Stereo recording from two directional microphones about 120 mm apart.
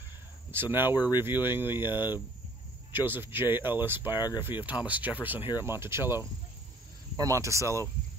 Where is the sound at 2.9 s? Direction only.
15° right (ahead or behind).